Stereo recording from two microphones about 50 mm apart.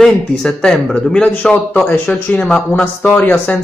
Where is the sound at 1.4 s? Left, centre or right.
Left.